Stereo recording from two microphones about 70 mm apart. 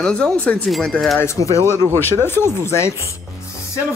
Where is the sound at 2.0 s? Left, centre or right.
Left.